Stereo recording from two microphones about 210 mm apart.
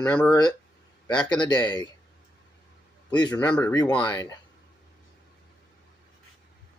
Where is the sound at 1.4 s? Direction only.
20° left (ahead or behind).